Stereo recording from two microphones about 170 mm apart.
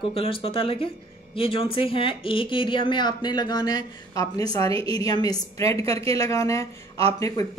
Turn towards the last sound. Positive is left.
turn(degrees=20)  # may be behind; listen again after turning